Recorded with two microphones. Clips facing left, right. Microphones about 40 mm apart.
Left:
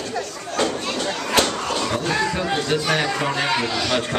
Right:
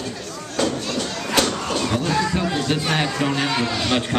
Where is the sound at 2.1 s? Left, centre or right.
Centre.